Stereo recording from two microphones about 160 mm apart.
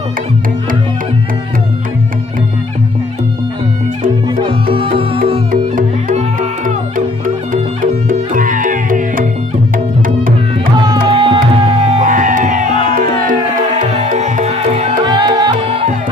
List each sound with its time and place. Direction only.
4.0 s music: 35° right (ahead or behind)
5.5 s music: 60° right (ahead or behind)
7.5 s music: 55° right (ahead or behind)
10.8 s music: 30° right (ahead or behind); by 15.0 s 45° right (ahead or behind)
15.0 s music: 25° right (ahead or behind)